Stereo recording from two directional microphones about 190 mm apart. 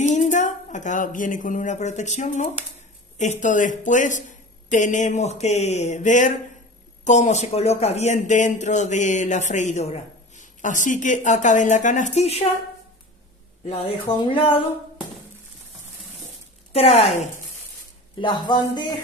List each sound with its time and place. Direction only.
0.0 s speech: 40° left (ahead or behind)
13.7 s speech: 30° left (ahead or behind)
16.7 s speech: 35° left (ahead or behind)